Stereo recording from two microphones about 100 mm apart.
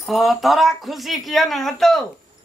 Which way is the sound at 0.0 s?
Centre (ahead or behind).